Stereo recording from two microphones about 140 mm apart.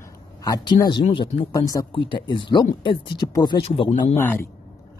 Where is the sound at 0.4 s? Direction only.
25° left (ahead or behind).